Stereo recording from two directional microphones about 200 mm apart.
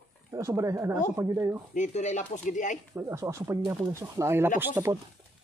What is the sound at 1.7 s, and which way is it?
Speech, 35° left (ahead or behind).